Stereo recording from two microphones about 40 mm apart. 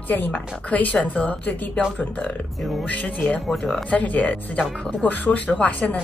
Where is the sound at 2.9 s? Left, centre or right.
Left.